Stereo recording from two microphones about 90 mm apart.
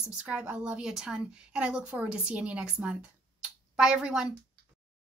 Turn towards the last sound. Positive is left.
turn(degrees=-10)  # may be behind; listen again after turning